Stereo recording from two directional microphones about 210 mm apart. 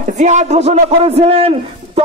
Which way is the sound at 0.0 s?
35° right (ahead or behind).